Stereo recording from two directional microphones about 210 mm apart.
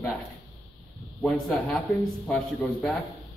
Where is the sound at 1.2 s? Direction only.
Centre (ahead or behind).